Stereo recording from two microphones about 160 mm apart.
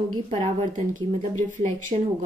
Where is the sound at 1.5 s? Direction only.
45° right (ahead or behind).